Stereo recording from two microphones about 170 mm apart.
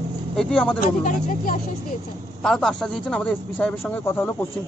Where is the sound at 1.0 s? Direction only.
55° left (ahead or behind).